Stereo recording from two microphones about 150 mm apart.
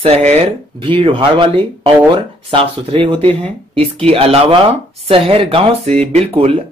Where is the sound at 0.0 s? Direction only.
45° right (ahead or behind).